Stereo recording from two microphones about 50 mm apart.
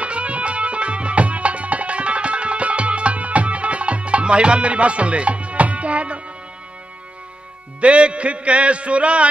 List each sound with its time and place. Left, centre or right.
0.0 s music: right
7.8 s a man's voice: right